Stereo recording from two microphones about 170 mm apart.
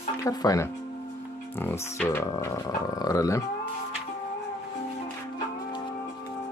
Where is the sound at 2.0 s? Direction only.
15° left (ahead or behind).